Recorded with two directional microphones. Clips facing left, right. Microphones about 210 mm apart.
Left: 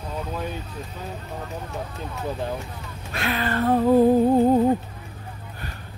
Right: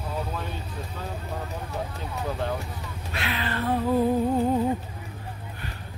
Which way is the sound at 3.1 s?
45° left (ahead or behind).